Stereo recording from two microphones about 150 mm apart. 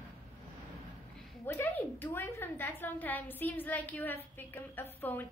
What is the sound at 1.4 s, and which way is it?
A woman's voice, 15° left (ahead or behind).